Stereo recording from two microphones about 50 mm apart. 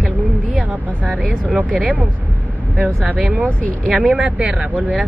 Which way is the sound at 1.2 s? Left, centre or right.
Right.